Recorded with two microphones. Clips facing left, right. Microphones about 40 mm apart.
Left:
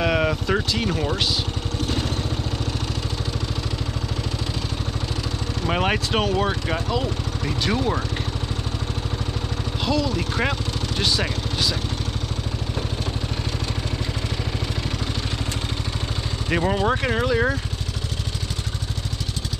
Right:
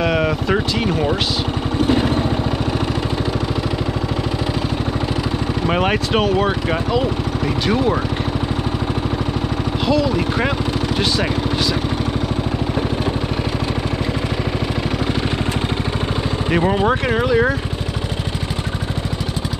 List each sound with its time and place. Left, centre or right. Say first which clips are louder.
0.0 s speech: right 3 dB; centre
1.8 s vehicle: right 10 dB; centre
5.7 s speech: right 4 dB; centre
9.8 s speech: right 6 dB; centre
16.4 s speech: right 4 dB; centre